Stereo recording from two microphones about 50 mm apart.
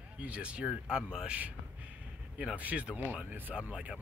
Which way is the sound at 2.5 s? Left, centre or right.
Right.